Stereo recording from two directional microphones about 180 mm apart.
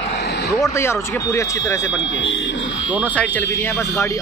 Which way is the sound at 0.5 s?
15° left (ahead or behind).